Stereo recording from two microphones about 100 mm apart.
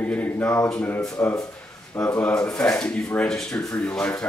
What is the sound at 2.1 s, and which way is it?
Speech, 15° left (ahead or behind).